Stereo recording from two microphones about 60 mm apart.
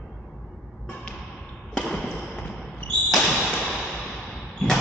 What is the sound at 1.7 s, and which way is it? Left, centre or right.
Basketball bounce, centre.